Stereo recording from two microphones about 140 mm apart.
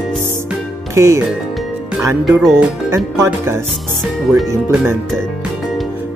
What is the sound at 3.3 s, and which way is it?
Music, 15° right (ahead or behind).